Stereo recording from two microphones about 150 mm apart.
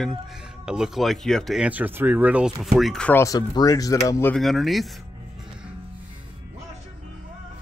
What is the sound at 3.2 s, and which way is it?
Speech, 25° left (ahead or behind).